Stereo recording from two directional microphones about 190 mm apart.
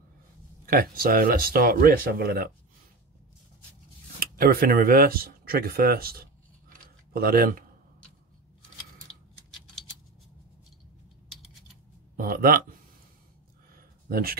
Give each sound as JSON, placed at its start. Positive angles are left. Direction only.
{"t": 0.7, "sound": "speech", "side_deg": -50}
{"t": 4.2, "sound": "speech", "side_deg": -50}
{"t": 12.2, "sound": "speech", "side_deg": -50}
{"t": 13.7, "sound": "a sound", "side_deg": -50}